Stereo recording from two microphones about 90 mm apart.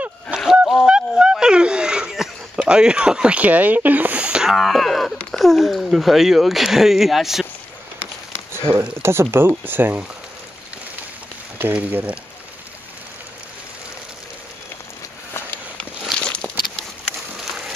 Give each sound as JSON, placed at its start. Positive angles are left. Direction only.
{"t": 0.4, "sound": "honk", "side_deg": 0}
{"t": 8.7, "sound": "speech", "side_deg": -35}
{"t": 11.5, "sound": "speech", "side_deg": -20}
{"t": 15.8, "sound": "a sound", "side_deg": 10}